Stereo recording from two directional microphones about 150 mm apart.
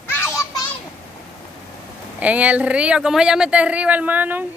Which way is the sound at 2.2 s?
10° right (ahead or behind).